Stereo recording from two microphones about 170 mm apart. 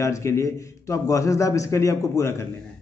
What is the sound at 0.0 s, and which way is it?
A man's voice, 15° left (ahead or behind).